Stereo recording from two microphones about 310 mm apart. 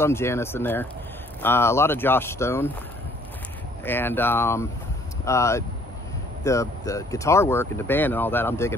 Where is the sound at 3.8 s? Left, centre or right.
Centre.